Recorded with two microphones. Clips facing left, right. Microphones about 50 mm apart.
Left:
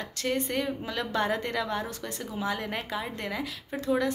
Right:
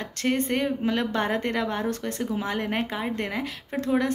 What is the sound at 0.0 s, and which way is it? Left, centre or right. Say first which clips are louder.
Speech: right 4 dB; right.